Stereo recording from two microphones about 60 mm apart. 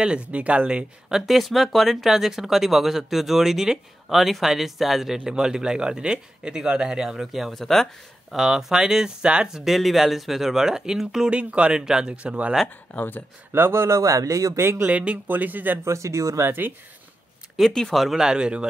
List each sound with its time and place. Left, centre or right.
0.0 s speech: centre
1.2 s speech: centre
7.5 s speech: centre
8.4 s speech: centre
9.7 s speech: centre; by 12.5 s right
12.9 s speech: left
13.5 s speech: right
14.6 s speech: right
14.9 s speech: right
15.8 s speech: right
16.4 s speech: right
17.6 s speech: centre
18.2 s speech: centre